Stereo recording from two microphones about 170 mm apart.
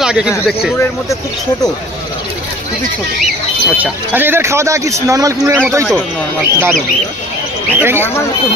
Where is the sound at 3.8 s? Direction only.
10° right (ahead or behind).